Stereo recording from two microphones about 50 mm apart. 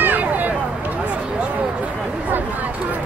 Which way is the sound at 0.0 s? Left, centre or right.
Right.